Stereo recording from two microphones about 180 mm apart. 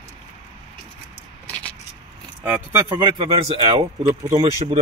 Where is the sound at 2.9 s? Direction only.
25° right (ahead or behind).